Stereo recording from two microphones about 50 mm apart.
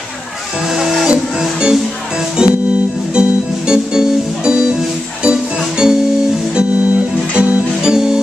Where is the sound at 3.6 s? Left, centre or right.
Centre.